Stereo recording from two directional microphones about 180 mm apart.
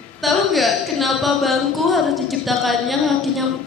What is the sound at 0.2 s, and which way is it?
A woman's voice, centre (ahead or behind).